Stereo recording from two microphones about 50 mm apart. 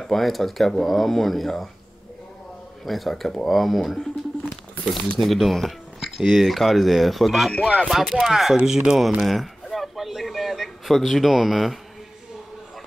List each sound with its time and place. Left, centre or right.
0.0 s speech: centre
2.8 s speech: centre
5.2 s speech: centre
7.5 s music: left
8.0 s speech: centre